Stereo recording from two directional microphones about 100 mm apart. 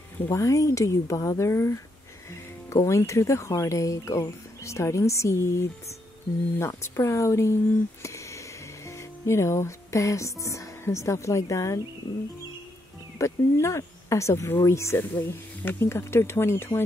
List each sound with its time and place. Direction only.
0.3 s speech: 30° left (ahead or behind)
13.2 s speech: 30° left (ahead or behind)